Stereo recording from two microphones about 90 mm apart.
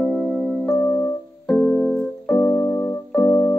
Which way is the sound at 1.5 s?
5° left (ahead or behind).